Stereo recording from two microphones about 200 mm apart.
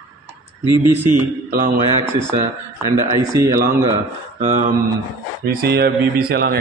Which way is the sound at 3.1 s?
15° right (ahead or behind).